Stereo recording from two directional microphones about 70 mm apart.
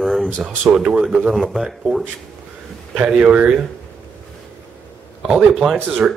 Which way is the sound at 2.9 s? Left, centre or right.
Right.